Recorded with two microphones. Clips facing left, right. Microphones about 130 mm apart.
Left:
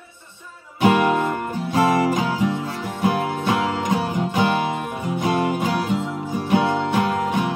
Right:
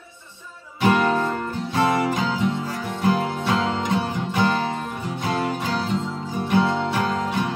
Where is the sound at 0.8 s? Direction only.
20° left (ahead or behind).